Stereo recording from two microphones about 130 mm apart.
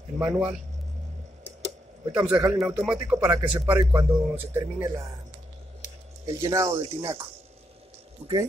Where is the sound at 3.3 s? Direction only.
30° right (ahead or behind).